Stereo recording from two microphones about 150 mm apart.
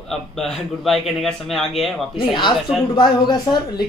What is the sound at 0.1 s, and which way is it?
Speech, centre (ahead or behind).